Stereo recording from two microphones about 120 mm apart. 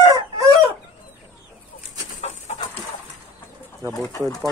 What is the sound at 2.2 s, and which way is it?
Bird, 65° left (ahead or behind).